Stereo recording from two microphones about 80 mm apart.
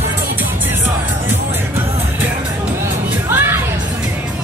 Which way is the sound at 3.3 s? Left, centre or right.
Right.